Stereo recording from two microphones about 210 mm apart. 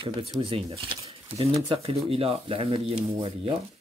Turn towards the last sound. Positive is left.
turn(degrees=-25)  # may be behind; listen again after turning